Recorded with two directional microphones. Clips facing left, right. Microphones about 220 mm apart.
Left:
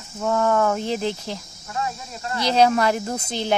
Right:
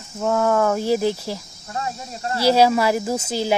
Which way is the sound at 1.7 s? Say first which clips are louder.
Even; 35° right (ahead or behind).